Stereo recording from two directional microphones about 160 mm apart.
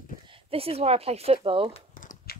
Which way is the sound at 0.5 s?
40° right (ahead or behind).